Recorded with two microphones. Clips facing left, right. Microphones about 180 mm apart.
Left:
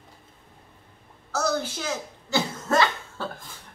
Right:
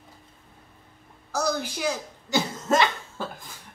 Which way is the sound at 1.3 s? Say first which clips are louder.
Left 1 dB; 15° right (ahead or behind).